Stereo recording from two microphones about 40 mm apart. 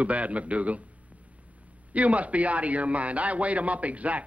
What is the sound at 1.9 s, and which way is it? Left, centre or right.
A man's voice, right.